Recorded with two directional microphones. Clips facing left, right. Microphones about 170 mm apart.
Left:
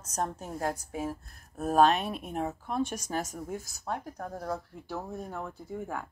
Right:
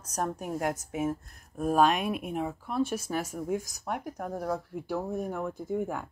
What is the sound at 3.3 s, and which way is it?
Speech, 15° right (ahead or behind).